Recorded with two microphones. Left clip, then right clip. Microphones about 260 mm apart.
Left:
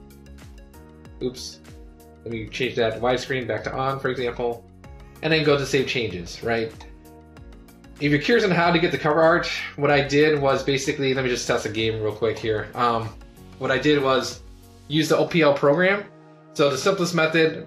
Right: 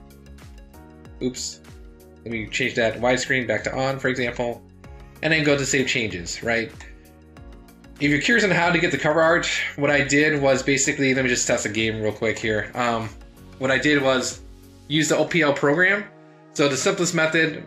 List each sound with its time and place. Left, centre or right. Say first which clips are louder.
2.5 s speech: right 1 dB; right
8.0 s speech: right 1 dB; right